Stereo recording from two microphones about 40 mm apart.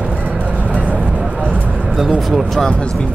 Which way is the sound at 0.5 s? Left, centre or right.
Right.